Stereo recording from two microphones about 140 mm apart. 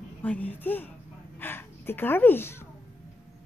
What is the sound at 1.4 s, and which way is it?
Speech, 15° left (ahead or behind).